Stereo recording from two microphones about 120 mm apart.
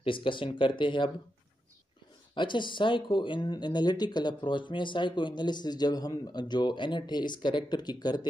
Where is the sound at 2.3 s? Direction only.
40° left (ahead or behind).